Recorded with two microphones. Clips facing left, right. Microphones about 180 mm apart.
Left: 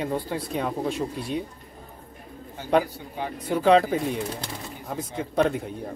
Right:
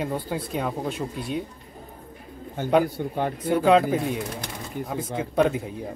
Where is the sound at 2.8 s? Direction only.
55° right (ahead or behind).